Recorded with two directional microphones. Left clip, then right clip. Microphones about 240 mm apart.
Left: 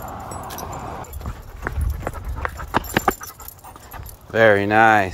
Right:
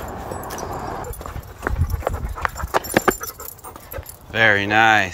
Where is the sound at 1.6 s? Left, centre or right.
Right.